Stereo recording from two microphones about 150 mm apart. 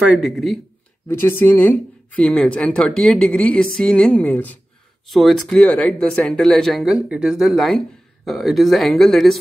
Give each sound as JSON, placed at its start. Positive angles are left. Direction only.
{"t": 0.0, "sound": "speech", "side_deg": -5}
{"t": 1.0, "sound": "speech", "side_deg": 15}